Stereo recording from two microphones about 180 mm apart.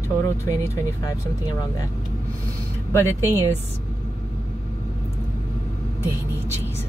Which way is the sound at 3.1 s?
15° right (ahead or behind).